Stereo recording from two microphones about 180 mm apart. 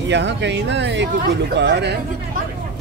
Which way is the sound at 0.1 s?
75° right (ahead or behind).